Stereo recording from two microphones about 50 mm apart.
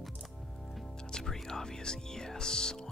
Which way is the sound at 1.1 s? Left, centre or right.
Centre.